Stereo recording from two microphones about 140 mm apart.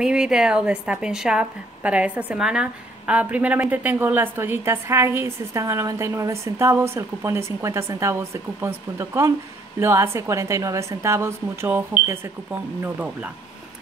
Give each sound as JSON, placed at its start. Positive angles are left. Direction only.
{"t": 0.0, "sound": "a woman's voice", "side_deg": -5}
{"t": 12.8, "sound": "a woman's voice", "side_deg": -10}